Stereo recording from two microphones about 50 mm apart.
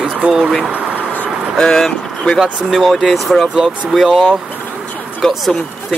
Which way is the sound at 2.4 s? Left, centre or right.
Centre.